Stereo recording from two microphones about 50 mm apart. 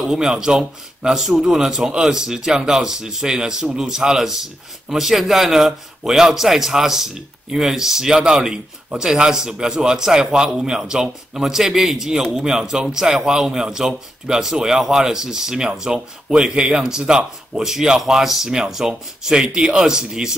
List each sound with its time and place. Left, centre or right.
0.0 s a man's voice: centre